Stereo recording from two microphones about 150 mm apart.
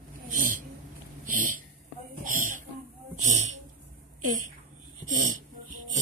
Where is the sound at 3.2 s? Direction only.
55° right (ahead or behind).